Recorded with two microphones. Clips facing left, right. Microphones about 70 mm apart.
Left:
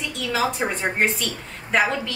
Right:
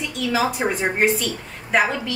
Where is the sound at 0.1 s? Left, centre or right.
Centre.